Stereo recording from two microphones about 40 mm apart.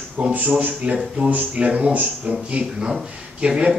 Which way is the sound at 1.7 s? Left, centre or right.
Right.